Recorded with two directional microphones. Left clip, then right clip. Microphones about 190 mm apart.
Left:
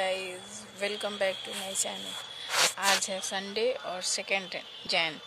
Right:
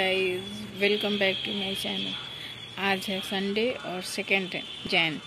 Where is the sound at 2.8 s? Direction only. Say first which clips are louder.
Even; 10° left (ahead or behind).